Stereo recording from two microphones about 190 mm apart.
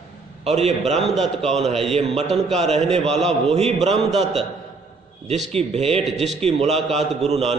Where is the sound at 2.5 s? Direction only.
35° right (ahead or behind).